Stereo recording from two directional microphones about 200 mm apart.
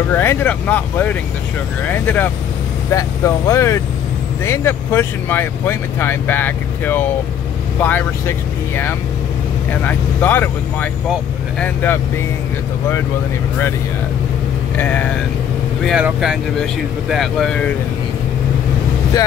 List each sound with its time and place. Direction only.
0.1 s speech: 10° left (ahead or behind)
14.8 s speech: 10° left (ahead or behind)
15.8 s speech: centre (ahead or behind)